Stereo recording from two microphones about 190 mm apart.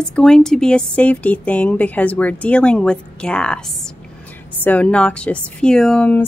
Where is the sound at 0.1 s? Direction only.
5° left (ahead or behind).